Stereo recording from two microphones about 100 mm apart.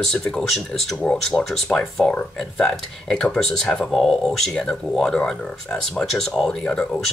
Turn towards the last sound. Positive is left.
turn(degrees=10)  # may be behind; listen again after turning